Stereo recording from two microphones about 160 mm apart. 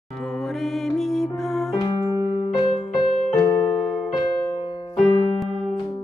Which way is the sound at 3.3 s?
15° left (ahead or behind).